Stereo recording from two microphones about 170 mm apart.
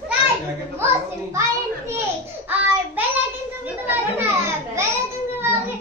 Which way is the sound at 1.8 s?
15° right (ahead or behind).